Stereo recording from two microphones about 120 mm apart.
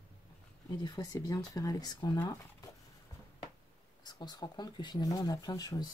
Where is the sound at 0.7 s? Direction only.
35° left (ahead or behind).